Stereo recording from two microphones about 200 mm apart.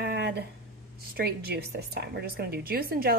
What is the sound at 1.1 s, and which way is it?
Speech, 50° right (ahead or behind).